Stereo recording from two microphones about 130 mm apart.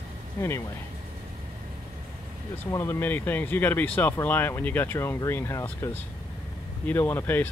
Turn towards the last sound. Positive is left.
turn(degrees=15)  # may be behind; listen again after turning